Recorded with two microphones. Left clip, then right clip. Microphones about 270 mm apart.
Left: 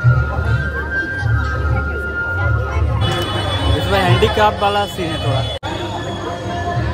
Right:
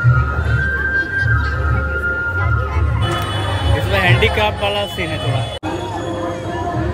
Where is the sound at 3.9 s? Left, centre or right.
Centre.